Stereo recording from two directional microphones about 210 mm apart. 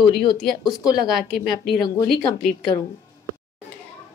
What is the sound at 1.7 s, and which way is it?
Speech, 20° left (ahead or behind).